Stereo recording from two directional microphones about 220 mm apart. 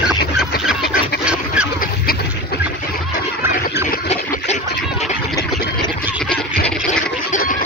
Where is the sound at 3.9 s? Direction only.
35° left (ahead or behind).